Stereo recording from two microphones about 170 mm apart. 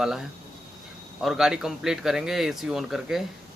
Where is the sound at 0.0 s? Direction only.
Centre (ahead or behind).